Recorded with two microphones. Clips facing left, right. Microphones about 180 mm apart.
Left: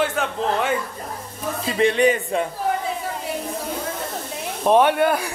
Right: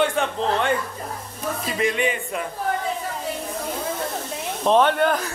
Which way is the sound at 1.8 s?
35° left (ahead or behind).